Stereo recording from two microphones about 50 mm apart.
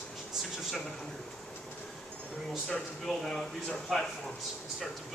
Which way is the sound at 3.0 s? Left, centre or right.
Centre.